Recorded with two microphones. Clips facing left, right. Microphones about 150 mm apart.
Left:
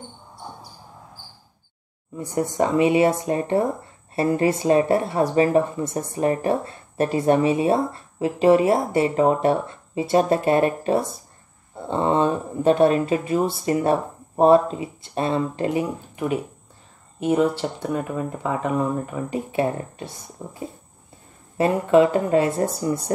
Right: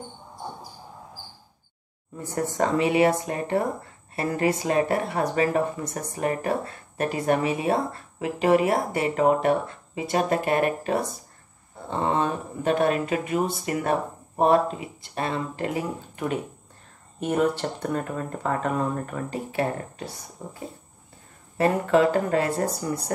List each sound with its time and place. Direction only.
2.1 s speech: 15° left (ahead or behind)
17.2 s speech: 10° left (ahead or behind)
21.5 s speech: 20° left (ahead or behind)